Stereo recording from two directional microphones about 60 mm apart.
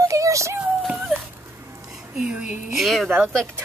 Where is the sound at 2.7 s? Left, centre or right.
Centre.